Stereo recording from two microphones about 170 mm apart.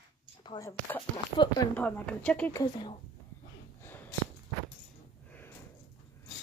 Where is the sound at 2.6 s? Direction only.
25° left (ahead or behind).